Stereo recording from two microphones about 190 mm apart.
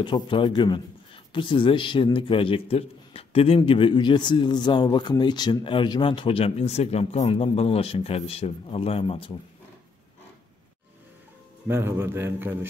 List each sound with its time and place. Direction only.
0.0 s a man's voice: 25° left (ahead or behind)
11.6 s a man's voice: 10° right (ahead or behind)